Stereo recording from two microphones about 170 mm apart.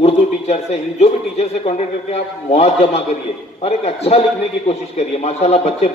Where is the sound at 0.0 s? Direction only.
40° left (ahead or behind).